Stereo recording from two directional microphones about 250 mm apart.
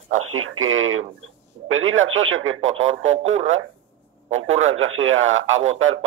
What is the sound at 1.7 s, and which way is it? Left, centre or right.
Speech, right.